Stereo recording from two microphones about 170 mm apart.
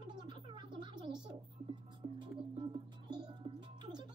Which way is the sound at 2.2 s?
25° right (ahead or behind).